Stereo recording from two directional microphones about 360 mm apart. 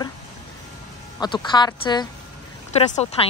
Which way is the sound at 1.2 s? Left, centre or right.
Centre.